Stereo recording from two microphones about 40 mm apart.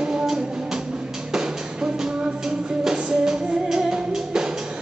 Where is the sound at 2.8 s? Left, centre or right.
Centre.